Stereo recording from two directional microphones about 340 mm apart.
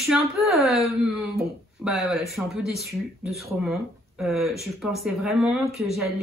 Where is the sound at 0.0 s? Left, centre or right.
Centre.